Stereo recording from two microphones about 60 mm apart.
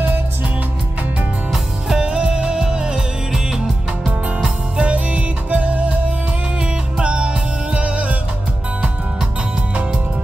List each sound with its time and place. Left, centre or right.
2.0 s music: centre